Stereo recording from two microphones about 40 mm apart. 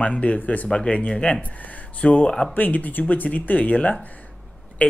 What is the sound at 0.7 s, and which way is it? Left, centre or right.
Speech, left.